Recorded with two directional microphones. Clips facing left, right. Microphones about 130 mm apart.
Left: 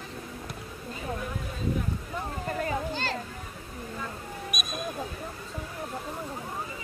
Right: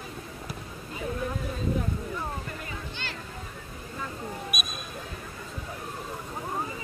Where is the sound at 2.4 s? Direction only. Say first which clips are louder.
Left 9 dB; 40° left (ahead or behind).